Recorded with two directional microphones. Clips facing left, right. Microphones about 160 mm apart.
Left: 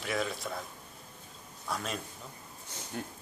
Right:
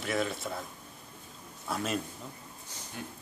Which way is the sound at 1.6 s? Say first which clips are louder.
Right 4 dB; 5° right (ahead or behind).